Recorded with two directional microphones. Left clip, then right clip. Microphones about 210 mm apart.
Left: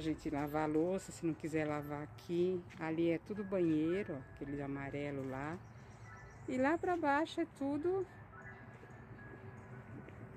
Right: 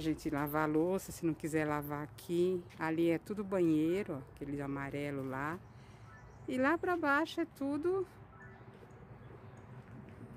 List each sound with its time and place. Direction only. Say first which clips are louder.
0.0 s speech: right 3 dB; 20° right (ahead or behind)